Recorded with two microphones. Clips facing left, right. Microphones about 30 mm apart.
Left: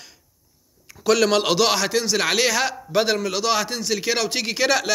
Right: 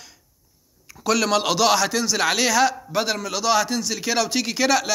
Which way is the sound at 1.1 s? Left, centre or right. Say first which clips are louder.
Left 2 dB; left.